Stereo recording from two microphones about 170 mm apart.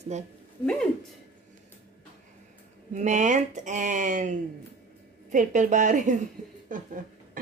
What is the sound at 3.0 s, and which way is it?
Speech, 45° right (ahead or behind).